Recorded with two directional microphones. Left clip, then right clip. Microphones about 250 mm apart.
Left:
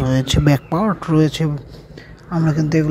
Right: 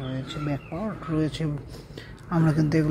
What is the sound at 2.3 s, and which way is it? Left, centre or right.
Speech, centre.